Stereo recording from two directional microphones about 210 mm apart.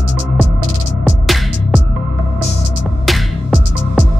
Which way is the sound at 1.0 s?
Centre (ahead or behind).